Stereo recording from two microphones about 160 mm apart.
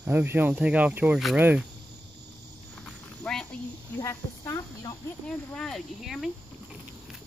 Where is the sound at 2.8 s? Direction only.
5° left (ahead or behind).